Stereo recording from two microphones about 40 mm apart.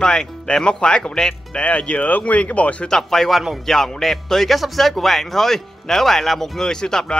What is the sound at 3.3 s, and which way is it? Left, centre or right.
Speech, centre.